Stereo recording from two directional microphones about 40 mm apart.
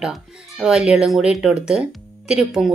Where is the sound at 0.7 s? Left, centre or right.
Right.